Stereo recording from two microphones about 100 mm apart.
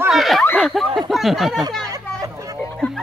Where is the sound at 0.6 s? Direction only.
Centre (ahead or behind).